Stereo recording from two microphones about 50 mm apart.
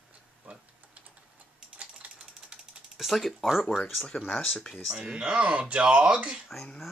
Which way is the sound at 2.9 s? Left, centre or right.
Centre.